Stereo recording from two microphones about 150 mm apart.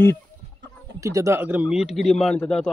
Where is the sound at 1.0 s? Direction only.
20° right (ahead or behind); by 2.7 s 5° left (ahead or behind).